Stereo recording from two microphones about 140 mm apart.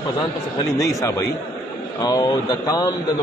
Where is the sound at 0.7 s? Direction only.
20° left (ahead or behind).